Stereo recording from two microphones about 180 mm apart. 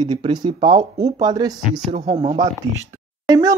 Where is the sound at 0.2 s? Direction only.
25° right (ahead or behind).